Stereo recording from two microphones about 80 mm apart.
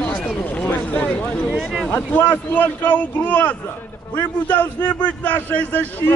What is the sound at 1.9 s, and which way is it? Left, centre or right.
A man's voice, left.